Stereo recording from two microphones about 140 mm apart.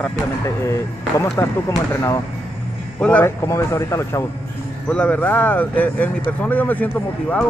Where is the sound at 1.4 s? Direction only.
20° left (ahead or behind).